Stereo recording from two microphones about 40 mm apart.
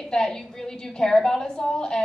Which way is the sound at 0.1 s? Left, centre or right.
Centre.